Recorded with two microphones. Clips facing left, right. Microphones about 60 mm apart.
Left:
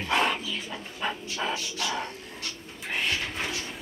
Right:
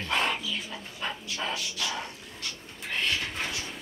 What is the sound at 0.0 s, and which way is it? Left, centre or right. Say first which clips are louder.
Dog: left 3 dB; centre.